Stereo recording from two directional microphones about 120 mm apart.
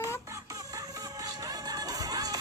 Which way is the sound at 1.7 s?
30° right (ahead or behind).